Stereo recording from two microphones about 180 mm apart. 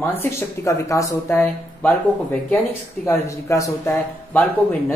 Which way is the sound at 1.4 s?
5° left (ahead or behind).